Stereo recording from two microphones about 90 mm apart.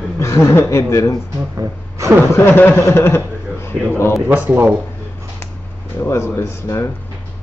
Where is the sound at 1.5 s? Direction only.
35° right (ahead or behind).